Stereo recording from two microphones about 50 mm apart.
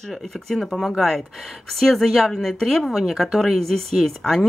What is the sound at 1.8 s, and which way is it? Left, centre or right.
Speech, centre.